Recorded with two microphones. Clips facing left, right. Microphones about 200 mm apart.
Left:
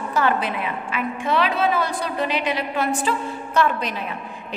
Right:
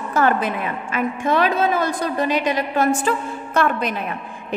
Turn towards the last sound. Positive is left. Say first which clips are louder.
# right 3 dB
turn(degrees=-55)  # may be behind; listen again after turning